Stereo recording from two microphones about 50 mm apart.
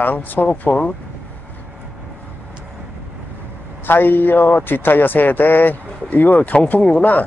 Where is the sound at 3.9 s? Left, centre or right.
Left; by 7.0 s centre.